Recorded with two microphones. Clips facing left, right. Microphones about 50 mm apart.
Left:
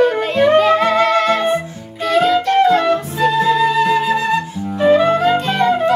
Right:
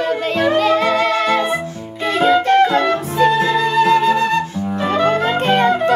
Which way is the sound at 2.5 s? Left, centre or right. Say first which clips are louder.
Left 1 dB; centre.